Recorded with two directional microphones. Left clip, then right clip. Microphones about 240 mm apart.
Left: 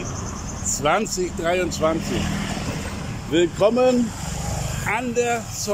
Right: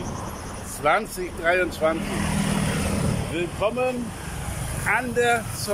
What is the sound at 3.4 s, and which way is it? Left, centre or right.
Speech, left.